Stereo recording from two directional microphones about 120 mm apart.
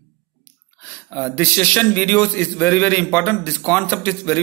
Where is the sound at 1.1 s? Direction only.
20° left (ahead or behind).